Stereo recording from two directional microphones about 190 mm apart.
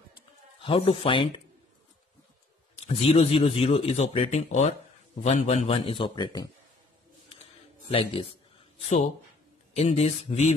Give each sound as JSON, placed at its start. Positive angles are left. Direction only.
{"t": 0.6, "sound": "a man's voice", "side_deg": 30}
{"t": 2.7, "sound": "a man's voice", "side_deg": 30}
{"t": 7.9, "sound": "a man's voice", "side_deg": 25}
{"t": 8.8, "sound": "speech", "side_deg": 40}